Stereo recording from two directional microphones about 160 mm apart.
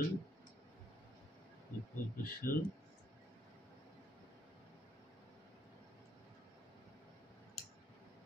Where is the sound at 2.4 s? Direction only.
65° left (ahead or behind).